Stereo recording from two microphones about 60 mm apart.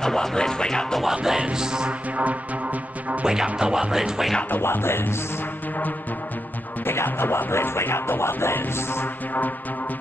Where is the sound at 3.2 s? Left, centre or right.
Centre.